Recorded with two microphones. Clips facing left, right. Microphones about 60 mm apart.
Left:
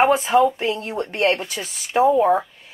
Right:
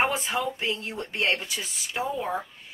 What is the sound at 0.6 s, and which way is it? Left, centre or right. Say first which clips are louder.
Speech: left 7 dB; left.